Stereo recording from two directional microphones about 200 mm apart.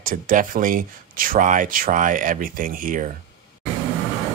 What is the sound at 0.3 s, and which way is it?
Speech, 45° right (ahead or behind).